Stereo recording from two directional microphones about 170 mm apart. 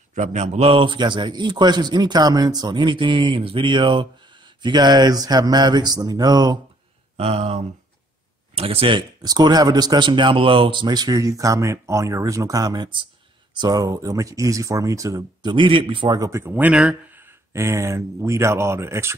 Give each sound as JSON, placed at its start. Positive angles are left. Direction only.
{"t": 0.1, "sound": "speech", "side_deg": -45}
{"t": 7.2, "sound": "a sound", "side_deg": -35}
{"t": 8.5, "sound": "speech", "side_deg": -35}